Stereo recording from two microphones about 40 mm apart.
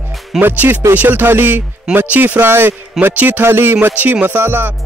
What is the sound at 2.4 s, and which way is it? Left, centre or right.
Speech, right.